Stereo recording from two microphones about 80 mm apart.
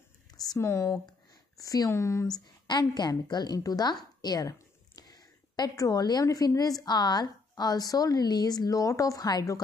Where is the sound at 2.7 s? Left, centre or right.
Left.